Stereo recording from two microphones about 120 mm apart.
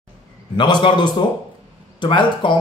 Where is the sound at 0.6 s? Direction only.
40° left (ahead or behind).